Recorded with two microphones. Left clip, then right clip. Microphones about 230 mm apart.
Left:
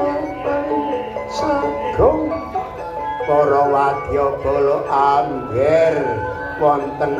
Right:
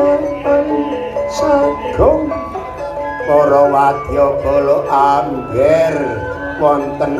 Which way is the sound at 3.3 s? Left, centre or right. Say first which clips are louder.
Right 5 dB; right.